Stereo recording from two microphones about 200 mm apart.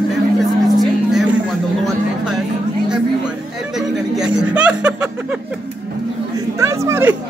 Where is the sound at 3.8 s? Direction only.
5° right (ahead or behind).